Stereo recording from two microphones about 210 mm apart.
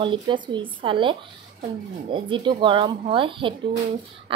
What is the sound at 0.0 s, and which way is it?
Speech, 25° right (ahead or behind).